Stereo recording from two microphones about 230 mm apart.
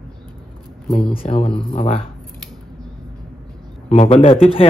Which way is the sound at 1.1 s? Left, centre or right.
Left.